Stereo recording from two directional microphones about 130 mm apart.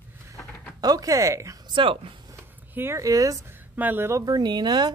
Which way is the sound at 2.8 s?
20° right (ahead or behind).